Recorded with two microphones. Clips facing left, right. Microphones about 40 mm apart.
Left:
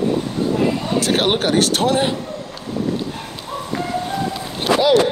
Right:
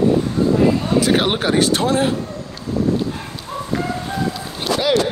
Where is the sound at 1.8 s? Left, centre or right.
Left.